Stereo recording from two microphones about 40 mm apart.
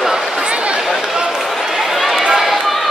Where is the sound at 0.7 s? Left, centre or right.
Centre.